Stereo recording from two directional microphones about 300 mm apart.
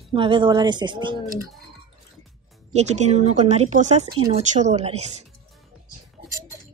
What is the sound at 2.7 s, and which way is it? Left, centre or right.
Speech, right.